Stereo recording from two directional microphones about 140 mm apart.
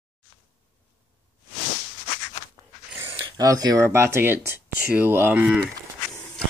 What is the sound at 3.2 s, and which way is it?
Speech, 25° right (ahead or behind).